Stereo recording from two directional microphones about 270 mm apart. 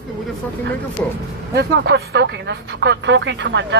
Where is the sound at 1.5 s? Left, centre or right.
Right.